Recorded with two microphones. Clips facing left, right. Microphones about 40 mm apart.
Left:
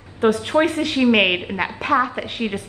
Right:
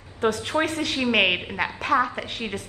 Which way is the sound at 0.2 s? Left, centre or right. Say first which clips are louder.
Left 6 dB; centre.